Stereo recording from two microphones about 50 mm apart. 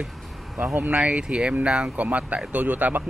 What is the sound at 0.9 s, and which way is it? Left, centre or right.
Speech, right.